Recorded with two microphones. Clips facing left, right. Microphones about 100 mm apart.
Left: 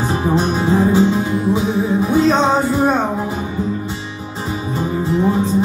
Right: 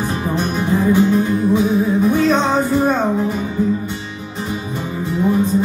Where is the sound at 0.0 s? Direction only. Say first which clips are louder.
Left 3 dB; 25° left (ahead or behind).